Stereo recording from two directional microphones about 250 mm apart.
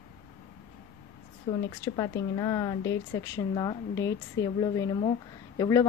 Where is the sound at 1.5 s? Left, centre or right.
Centre.